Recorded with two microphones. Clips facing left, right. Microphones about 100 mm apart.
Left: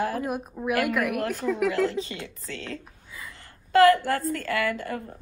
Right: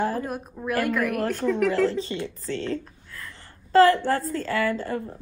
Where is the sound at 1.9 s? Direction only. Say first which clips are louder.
Right 4 dB; 35° right (ahead or behind).